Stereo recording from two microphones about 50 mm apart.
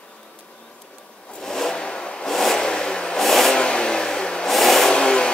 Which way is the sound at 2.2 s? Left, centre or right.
Centre.